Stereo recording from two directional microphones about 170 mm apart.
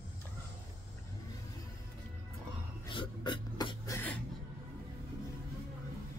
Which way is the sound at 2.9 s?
30° left (ahead or behind).